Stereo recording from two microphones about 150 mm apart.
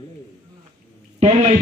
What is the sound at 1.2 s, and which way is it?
Speech, 45° right (ahead or behind).